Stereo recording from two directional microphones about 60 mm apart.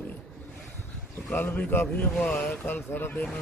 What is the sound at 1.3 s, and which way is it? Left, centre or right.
Speech, left.